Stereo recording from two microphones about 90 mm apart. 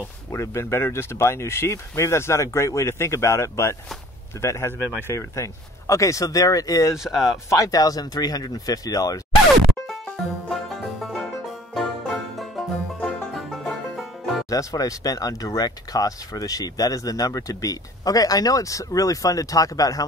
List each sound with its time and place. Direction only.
0.3 s speech: 30° left (ahead or behind)
7.0 s speech: centre (ahead or behind)
7.4 s speech: 35° left (ahead or behind)
10.5 s music: centre (ahead or behind)
13.5 s music: centre (ahead or behind)
14.5 s speech: 40° left (ahead or behind)